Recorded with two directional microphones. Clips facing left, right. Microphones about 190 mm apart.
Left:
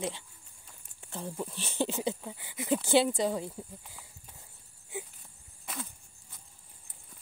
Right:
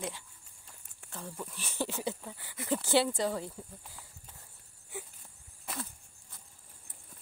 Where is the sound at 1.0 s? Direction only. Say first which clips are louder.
Left 5 dB; 25° left (ahead or behind).